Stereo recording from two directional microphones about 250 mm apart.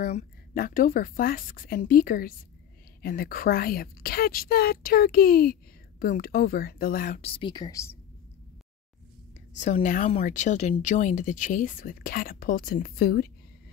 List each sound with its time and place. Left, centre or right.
0.0 s a woman's voice: left
7.2 s speech: left
9.6 s a woman's voice: left